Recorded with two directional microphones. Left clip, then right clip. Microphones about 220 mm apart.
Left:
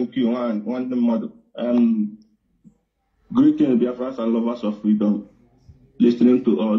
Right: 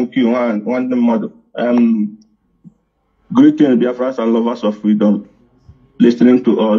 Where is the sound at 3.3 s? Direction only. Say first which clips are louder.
Right 7 dB; 25° right (ahead or behind).